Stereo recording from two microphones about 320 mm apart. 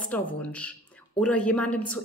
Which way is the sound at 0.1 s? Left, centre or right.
Centre.